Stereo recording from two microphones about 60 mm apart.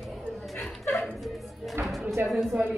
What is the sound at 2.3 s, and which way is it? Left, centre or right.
Music, centre.